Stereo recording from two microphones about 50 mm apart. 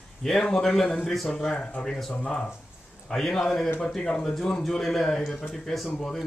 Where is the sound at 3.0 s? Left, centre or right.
Centre.